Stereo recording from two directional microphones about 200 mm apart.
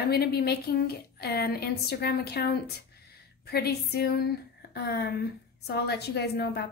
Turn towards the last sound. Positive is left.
turn(degrees=55)  # may be behind; listen again after turning